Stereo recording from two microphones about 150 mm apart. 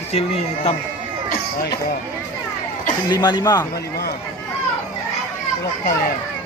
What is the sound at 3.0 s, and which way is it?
Speech, 30° left (ahead or behind).